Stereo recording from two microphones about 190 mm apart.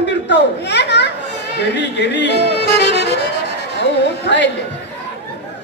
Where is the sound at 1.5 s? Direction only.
65° left (ahead or behind).